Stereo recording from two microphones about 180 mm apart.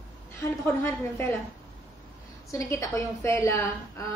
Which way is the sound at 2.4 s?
15° left (ahead or behind).